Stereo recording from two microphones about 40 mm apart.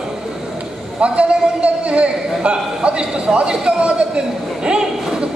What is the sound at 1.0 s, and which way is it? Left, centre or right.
A man's voice, right.